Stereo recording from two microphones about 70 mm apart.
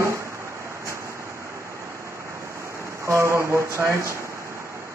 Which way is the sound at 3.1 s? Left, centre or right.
Right.